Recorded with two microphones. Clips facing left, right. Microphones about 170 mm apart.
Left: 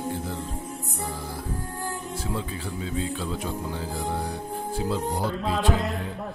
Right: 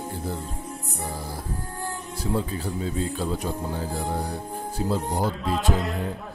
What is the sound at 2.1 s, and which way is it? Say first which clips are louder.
A man's voice: right 9 dB; 40° right (ahead or behind).